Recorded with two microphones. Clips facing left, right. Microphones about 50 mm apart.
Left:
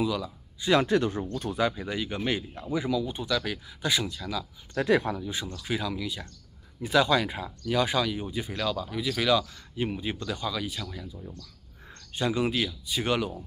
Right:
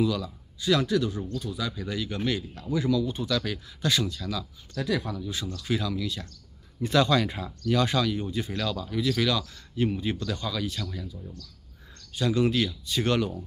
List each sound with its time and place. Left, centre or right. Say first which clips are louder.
0.0 s speech: right 2 dB; centre
0.6 s speech: left 1 dB; left
1.8 s speech: even; left
4.7 s speech: left 5 dB; left
5.2 s speech: even; left
11.1 s speech: even; left
11.9 s a sound: even; left
12.3 s speech: right 3 dB; centre